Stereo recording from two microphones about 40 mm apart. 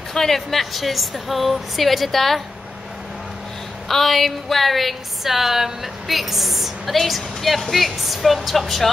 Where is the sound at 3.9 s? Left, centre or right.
Centre.